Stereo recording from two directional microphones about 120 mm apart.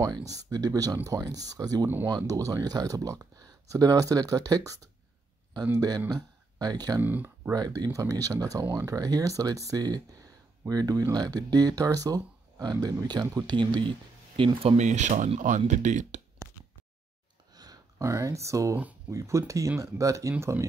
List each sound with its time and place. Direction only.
0.0 s speech: 30° right (ahead or behind)
5.8 s speech: 30° right (ahead or behind)
7.0 s speech: 15° right (ahead or behind)
7.5 s speech: 35° right (ahead or behind)
14.8 s speech: 80° right
17.6 s speech: 30° right (ahead or behind)